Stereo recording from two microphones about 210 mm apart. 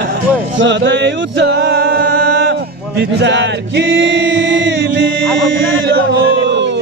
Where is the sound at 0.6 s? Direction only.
60° right (ahead or behind).